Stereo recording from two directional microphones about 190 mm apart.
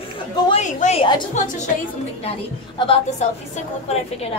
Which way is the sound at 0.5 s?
35° left (ahead or behind).